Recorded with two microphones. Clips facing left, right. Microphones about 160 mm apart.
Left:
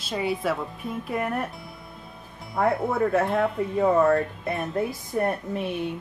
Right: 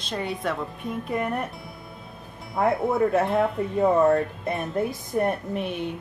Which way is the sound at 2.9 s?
20° right (ahead or behind).